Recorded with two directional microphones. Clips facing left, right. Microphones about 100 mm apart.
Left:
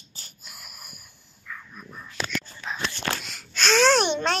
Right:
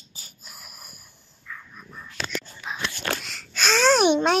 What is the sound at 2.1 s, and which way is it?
Whispering, 5° right (ahead or behind).